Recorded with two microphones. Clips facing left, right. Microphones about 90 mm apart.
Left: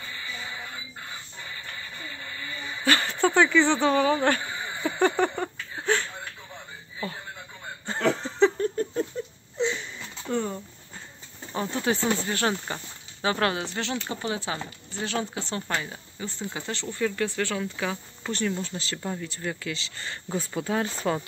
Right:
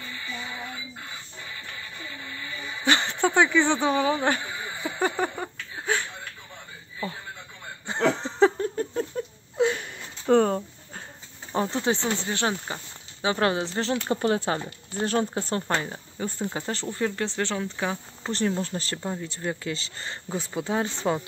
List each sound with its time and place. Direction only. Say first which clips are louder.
2.8 s speech: even; 20° right (ahead or behind)
4.9 s a sound: left 3 dB; 5° right (ahead or behind)
7.8 s snicker: right 2 dB; 20° right (ahead or behind)
8.2 s a sound: even; 35° right (ahead or behind)
9.6 s a sound: right 4 dB; 50° right (ahead or behind)
11.6 s speech: even; 25° right (ahead or behind)
13.7 s speech: right 5 dB; 35° right (ahead or behind)
16.5 s speech: right 3 dB; 35° right (ahead or behind)
16.8 s speech: left 2 dB; 25° right (ahead or behind)
19.0 s speech: even; 25° right (ahead or behind)